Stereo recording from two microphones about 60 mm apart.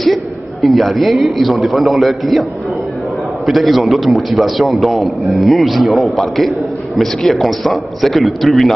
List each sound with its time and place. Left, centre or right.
0.0 s a man's voice: centre
3.4 s a man's voice: centre